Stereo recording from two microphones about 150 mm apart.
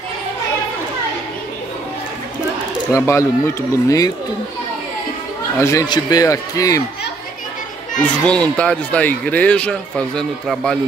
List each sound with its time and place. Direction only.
2.9 s speech: 20° left (ahead or behind)
5.6 s speech: 20° left (ahead or behind)
8.3 s speech: 5° left (ahead or behind)